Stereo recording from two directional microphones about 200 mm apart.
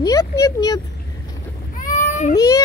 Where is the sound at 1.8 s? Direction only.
40° left (ahead or behind).